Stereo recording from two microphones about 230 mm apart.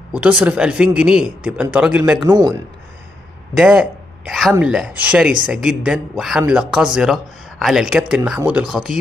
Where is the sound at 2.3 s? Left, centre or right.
Centre.